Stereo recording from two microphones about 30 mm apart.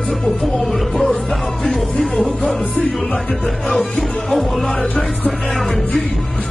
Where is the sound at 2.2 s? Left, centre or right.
Centre.